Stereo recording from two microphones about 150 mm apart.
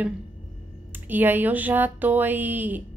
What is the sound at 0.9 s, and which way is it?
Speech, 10° right (ahead or behind).